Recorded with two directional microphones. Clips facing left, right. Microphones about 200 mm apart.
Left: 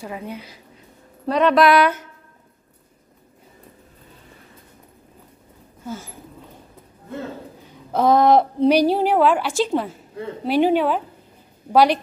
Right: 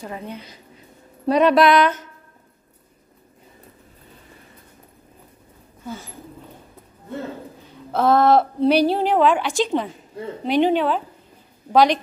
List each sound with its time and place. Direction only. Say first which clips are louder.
0.0 s a woman's voice: left 1 dB; 10° left (ahead or behind)
1.2 s speech: right 2 dB; 10° right (ahead or behind)
1.6 s a woman's voice: even; 5° left (ahead or behind)
5.9 s a woman's voice: left 1 dB; 10° left (ahead or behind)
7.6 s a woman's voice: left 1 dB; 10° left (ahead or behind)